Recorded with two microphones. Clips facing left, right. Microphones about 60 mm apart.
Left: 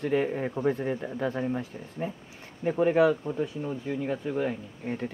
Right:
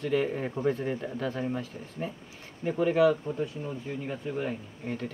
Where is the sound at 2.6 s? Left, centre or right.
Left.